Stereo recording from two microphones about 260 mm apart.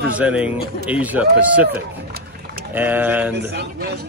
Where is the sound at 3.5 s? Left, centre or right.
Right.